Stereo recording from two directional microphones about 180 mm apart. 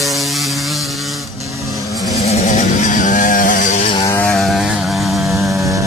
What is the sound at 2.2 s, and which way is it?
Vehicle, 40° left (ahead or behind).